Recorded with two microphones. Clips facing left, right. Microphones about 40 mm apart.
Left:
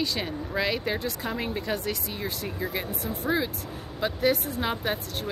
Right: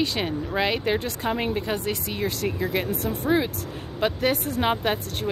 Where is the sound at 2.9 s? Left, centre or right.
Right.